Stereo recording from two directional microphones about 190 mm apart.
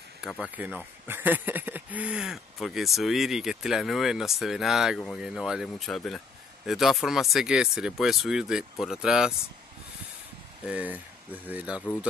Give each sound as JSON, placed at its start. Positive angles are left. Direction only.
{"t": 0.2, "sound": "speech", "side_deg": -5}
{"t": 10.6, "sound": "speech", "side_deg": -5}